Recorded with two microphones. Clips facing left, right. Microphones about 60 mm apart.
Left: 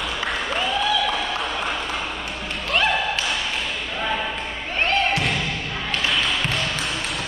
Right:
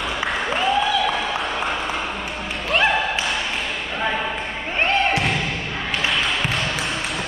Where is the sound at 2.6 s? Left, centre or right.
Centre.